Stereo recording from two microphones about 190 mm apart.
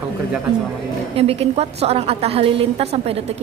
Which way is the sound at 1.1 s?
30° right (ahead or behind).